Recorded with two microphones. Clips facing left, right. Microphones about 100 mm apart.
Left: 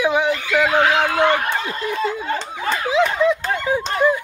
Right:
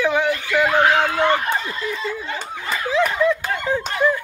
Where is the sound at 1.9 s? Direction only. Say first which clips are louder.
Left 5 dB; 50° left (ahead or behind).